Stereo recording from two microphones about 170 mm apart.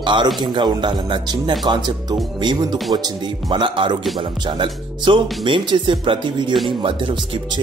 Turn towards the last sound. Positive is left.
turn(degrees=-25)  # may be behind; listen again after turning